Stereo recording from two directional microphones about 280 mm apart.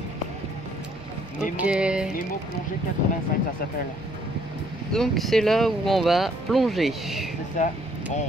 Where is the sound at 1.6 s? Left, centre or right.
Centre.